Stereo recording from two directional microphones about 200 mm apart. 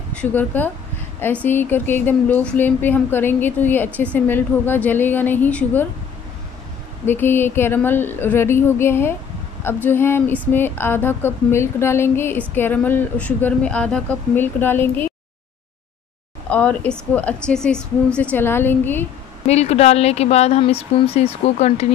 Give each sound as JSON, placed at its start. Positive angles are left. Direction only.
{"t": 0.1, "sound": "speech", "side_deg": 5}
{"t": 7.1, "sound": "speech", "side_deg": 10}
{"t": 16.4, "sound": "speech", "side_deg": 5}
{"t": 19.4, "sound": "speech", "side_deg": 30}